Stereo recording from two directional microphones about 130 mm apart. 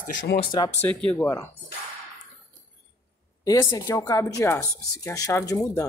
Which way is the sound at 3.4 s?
30° left (ahead or behind).